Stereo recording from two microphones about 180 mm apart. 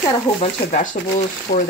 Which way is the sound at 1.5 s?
45° left (ahead or behind).